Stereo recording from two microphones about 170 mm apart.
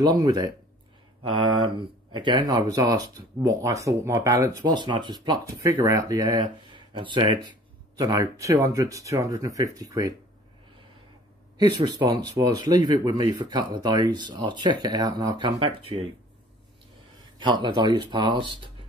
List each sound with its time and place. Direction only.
0.0 s speech: 25° right (ahead or behind)
11.5 s speech: 25° right (ahead or behind)
17.2 s speech: 25° right (ahead or behind)